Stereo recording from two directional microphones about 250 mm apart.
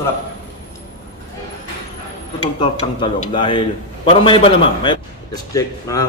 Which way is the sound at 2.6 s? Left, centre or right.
Centre.